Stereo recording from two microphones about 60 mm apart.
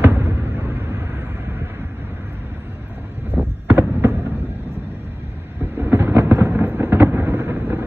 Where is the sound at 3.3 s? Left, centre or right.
Right.